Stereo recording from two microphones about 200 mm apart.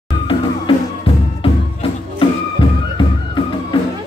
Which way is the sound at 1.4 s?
25° left (ahead or behind).